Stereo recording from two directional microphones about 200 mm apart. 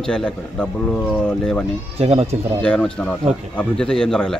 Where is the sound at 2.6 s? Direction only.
5° left (ahead or behind).